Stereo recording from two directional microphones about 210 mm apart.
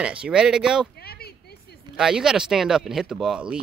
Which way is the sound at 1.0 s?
50° left (ahead or behind).